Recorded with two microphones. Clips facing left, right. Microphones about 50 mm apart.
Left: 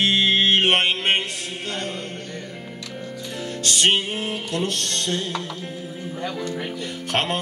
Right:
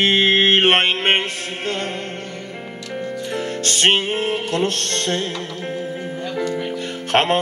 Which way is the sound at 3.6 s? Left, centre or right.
Right.